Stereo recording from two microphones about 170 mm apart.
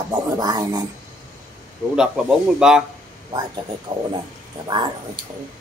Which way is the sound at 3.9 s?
45° right (ahead or behind).